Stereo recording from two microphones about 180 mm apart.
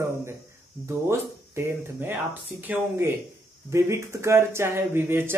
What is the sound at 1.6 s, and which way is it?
Speech, 15° right (ahead or behind).